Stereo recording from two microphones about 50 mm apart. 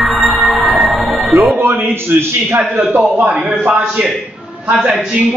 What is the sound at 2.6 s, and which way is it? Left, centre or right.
A man's voice, right.